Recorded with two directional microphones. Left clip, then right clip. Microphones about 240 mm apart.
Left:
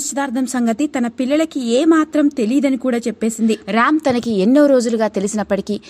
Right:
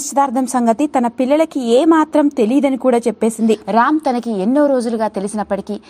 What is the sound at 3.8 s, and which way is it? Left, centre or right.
A woman's voice, left.